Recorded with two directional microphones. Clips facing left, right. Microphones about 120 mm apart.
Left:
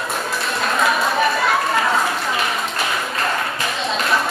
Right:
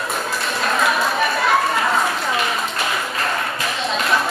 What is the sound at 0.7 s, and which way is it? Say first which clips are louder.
Chatter: left 1 dB; centre (ahead or behind).